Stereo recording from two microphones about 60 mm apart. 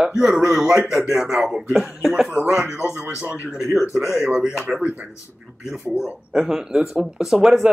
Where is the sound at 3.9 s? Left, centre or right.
Centre.